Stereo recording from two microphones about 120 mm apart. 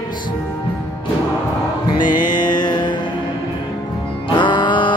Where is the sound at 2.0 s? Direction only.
90° left.